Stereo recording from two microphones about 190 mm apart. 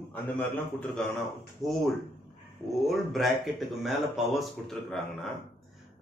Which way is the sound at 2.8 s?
Centre (ahead or behind).